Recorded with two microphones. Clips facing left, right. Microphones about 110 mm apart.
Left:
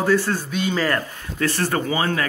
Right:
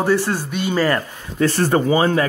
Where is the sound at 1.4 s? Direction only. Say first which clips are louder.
Right 5 dB; 30° right (ahead or behind).